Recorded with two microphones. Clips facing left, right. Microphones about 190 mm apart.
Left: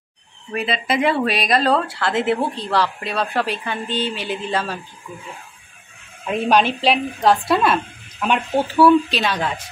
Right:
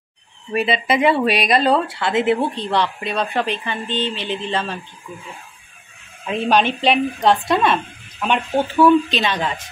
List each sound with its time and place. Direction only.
0.6 s speech: centre (ahead or behind)
6.2 s speech: 5° left (ahead or behind)